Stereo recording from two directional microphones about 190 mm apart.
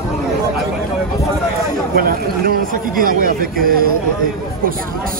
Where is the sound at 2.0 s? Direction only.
50° right (ahead or behind).